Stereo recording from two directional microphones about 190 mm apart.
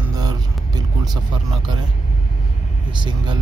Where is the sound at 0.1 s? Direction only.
20° right (ahead or behind).